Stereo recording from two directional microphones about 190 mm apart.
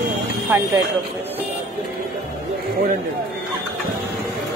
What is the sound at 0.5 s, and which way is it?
Speech, 15° right (ahead or behind).